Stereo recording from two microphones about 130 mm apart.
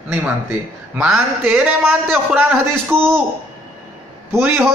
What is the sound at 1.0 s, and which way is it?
Speech, 5° right (ahead or behind).